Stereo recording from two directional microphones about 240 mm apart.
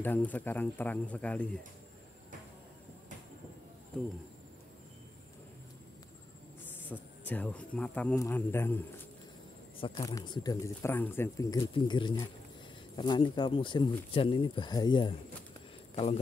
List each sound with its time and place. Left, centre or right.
0.0 s speech: centre
6.9 s speech: centre
9.8 s speech: centre